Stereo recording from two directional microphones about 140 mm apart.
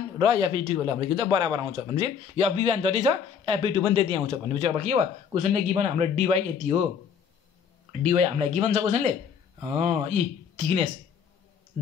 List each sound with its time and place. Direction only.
0.2 s speech: 35° right (ahead or behind); by 6.8 s 50° right (ahead or behind)
8.1 s speech: 55° right (ahead or behind)